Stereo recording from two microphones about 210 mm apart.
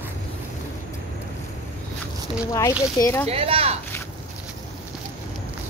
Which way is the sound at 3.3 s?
25° right (ahead or behind).